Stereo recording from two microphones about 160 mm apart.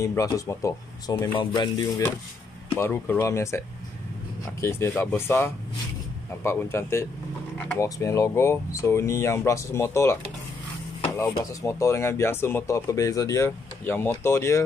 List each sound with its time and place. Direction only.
0.0 s speech: 20° left (ahead or behind)
1.4 s speech: 30° left (ahead or behind)
2.7 s speech: 15° left (ahead or behind)
7.8 s speech: 20° left (ahead or behind)
11.6 s speech: 20° left (ahead or behind)